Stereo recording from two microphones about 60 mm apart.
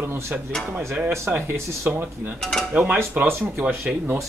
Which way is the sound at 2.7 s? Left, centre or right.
Centre.